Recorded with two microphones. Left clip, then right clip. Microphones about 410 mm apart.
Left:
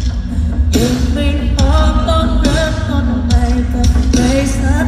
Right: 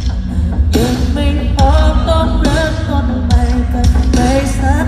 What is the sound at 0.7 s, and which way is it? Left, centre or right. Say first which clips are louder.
Music: even; right.